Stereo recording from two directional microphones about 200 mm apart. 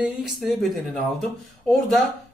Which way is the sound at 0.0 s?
5° right (ahead or behind).